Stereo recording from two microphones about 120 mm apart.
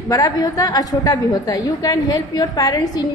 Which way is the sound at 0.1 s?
30° left (ahead or behind).